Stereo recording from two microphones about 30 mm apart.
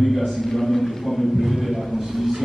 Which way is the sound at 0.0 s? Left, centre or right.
Centre.